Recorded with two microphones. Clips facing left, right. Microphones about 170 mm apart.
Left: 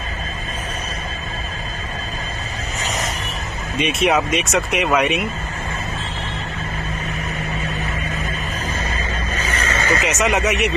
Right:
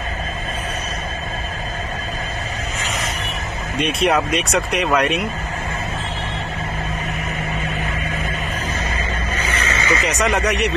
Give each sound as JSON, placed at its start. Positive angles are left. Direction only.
{"t": 3.7, "sound": "speech", "side_deg": 0}
{"t": 9.4, "sound": "a sound", "side_deg": 45}
{"t": 10.0, "sound": "speech", "side_deg": 5}